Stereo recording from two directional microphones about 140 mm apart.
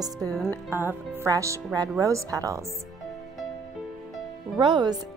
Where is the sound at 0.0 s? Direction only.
25° right (ahead or behind).